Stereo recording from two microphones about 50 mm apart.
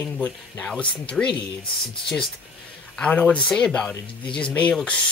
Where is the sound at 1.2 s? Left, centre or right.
Centre.